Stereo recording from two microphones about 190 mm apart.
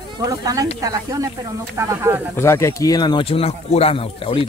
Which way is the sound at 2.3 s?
15° left (ahead or behind).